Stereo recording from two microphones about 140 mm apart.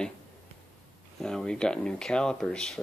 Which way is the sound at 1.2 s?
5° left (ahead or behind).